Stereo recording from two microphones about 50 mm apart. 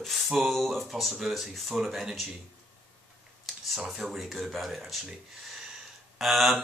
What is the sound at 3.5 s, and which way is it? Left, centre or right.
Speech, centre.